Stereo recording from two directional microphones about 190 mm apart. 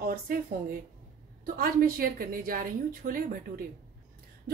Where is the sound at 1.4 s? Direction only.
50° right (ahead or behind).